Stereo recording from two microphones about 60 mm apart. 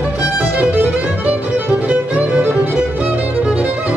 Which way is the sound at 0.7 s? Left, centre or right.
Right.